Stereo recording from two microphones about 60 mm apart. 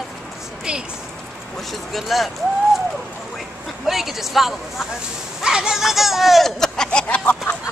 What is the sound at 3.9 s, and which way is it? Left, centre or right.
Speech, centre.